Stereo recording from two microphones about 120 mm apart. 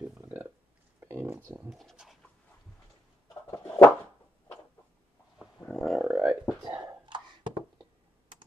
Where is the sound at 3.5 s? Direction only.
20° left (ahead or behind).